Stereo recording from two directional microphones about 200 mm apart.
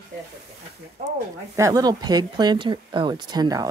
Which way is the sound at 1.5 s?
15° right (ahead or behind).